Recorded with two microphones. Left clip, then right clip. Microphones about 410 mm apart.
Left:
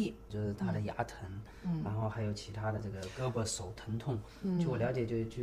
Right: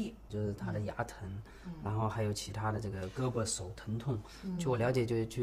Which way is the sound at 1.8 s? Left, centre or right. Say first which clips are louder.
Right 5 dB; right.